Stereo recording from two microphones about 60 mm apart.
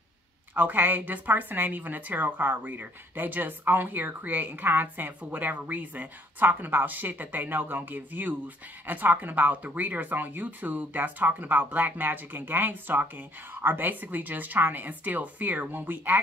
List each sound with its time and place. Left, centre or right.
0.6 s a woman's voice: right